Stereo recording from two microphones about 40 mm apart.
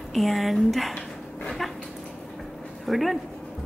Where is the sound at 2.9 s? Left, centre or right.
Centre.